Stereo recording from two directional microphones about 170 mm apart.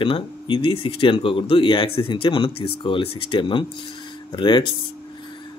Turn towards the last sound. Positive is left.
turn(degrees=30)  # may be behind; listen again after turning